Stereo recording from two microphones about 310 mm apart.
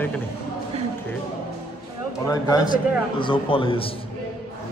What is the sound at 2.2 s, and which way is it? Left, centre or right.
A man's voice, centre.